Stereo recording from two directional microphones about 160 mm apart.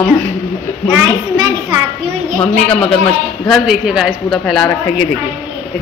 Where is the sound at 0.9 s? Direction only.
25° right (ahead or behind).